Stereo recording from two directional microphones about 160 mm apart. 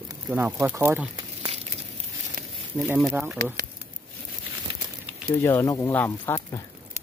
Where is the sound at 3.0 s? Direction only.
5° right (ahead or behind).